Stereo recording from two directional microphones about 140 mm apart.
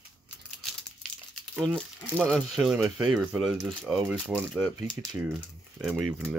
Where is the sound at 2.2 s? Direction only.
Centre (ahead or behind).